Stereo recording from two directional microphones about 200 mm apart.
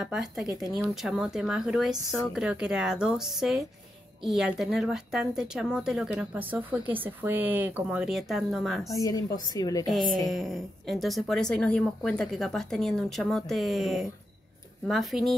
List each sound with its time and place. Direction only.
0.0 s speech: centre (ahead or behind)
8.9 s speech: 15° left (ahead or behind)
9.8 s speech: centre (ahead or behind)